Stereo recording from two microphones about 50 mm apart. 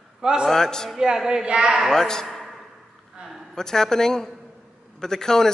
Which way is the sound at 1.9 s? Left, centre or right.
Centre.